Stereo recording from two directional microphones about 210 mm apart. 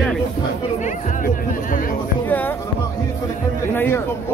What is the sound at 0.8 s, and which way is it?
Music, 40° left (ahead or behind).